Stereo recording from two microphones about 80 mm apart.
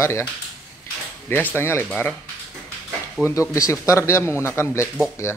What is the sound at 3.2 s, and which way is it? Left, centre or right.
Speech, left.